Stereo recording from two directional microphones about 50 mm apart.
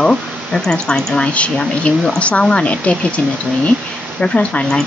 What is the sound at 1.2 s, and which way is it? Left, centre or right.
Speech, left.